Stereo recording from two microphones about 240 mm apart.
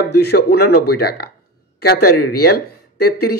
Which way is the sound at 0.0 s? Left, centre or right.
Left.